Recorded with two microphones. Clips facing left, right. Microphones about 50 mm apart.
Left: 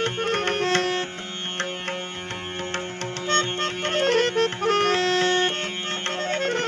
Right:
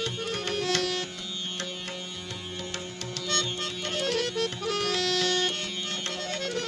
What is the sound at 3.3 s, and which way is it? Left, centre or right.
Music, left.